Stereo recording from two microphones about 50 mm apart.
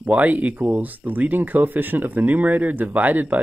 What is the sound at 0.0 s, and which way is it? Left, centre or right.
Speech, right.